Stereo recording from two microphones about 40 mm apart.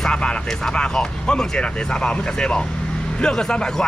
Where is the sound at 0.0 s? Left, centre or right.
Left.